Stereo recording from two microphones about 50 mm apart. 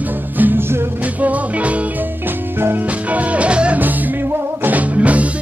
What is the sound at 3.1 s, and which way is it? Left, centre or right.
Music, right.